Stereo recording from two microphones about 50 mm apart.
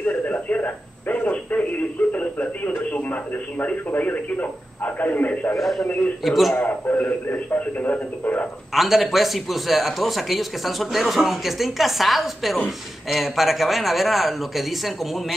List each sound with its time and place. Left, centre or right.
0.0 s a sound: left
1.3 s a sound: left
2.1 s speech: left
5.6 s speech: centre
5.9 s a man's voice: left
6.2 s speech: centre
6.5 s a man's voice: left
8.7 s speech: centre